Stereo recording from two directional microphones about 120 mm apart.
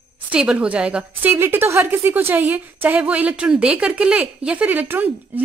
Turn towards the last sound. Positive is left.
turn(degrees=-15)  # may be behind; listen again after turning